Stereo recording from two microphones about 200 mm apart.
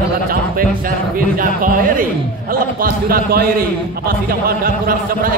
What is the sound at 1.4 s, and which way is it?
Speech, 45° right (ahead or behind).